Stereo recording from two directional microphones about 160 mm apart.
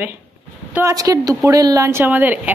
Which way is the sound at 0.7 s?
20° right (ahead or behind).